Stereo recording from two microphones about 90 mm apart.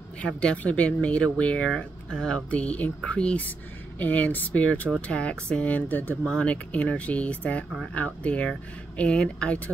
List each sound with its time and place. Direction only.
0.2 s speech: 10° left (ahead or behind)